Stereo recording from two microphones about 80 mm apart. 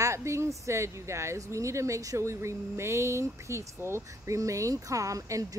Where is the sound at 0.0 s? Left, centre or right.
Right.